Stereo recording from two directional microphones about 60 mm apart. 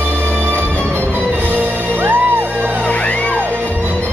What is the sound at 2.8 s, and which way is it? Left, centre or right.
Music, left.